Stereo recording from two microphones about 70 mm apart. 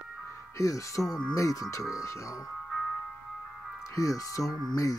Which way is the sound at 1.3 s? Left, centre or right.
Left.